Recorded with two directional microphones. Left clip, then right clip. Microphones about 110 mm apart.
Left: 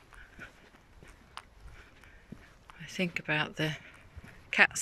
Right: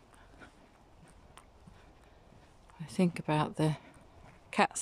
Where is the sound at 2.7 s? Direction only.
40° right (ahead or behind).